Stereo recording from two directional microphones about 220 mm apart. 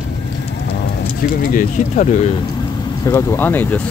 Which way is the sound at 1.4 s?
40° left (ahead or behind).